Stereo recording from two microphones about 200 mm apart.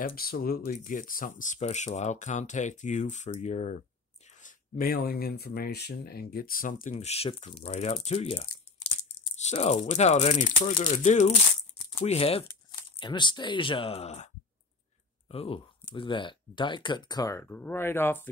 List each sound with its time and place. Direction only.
0.0 s speech: 50° left (ahead or behind); by 18.3 s 10° left (ahead or behind)